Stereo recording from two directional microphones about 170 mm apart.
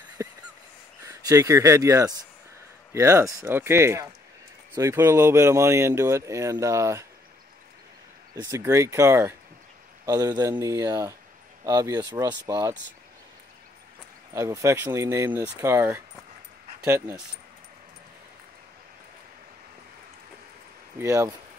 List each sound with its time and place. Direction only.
0.2 s a sound: 20° right (ahead or behind)
1.0 s speech: 20° right (ahead or behind)
8.5 s speech: 15° right (ahead or behind)
14.3 s speech: 15° right (ahead or behind)
21.0 s speech: 20° right (ahead or behind)